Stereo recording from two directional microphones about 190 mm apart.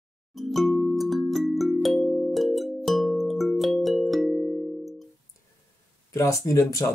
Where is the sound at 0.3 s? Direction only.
Centre (ahead or behind).